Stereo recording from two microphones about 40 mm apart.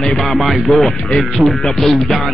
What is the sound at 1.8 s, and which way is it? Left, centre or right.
Speech, centre.